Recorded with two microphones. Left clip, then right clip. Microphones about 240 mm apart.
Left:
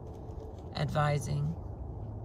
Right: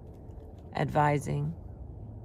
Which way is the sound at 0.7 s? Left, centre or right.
Centre.